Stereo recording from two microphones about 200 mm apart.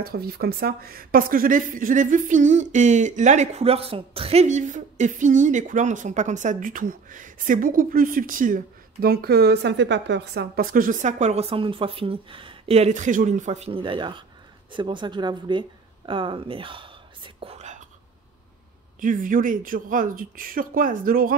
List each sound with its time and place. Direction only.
0.0 s a woman's voice: 50° right (ahead or behind)
18.9 s speech: 40° right (ahead or behind)